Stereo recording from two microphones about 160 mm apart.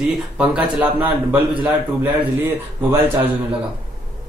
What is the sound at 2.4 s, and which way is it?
Speech, 10° right (ahead or behind).